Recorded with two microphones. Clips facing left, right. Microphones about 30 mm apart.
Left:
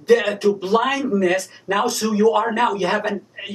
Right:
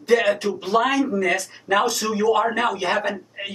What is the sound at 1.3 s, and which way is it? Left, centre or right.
Speech, centre.